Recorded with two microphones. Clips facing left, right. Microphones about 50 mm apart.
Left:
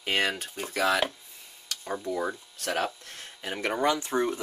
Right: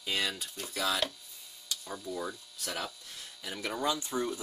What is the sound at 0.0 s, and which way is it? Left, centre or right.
Speech, left.